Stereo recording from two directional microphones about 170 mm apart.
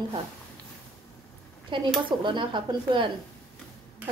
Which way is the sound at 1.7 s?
30° right (ahead or behind).